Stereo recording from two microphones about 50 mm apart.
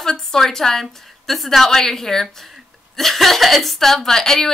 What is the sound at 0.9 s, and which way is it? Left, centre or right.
A woman's voice, centre.